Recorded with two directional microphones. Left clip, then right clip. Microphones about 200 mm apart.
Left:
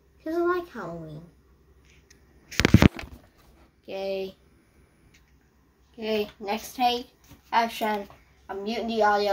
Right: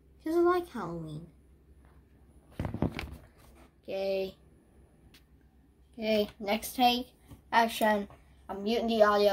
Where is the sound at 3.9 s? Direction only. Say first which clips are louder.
Left 1 dB; 5° right (ahead or behind).